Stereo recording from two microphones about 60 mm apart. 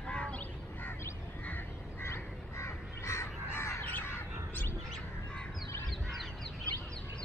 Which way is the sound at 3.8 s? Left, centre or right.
Left.